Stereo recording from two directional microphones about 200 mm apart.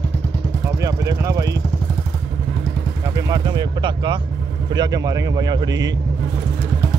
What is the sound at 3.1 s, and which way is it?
Speech, 20° right (ahead or behind).